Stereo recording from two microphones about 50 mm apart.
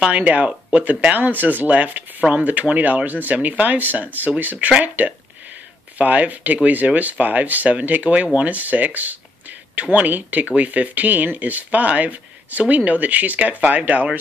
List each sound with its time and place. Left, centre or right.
0.1 s speech: right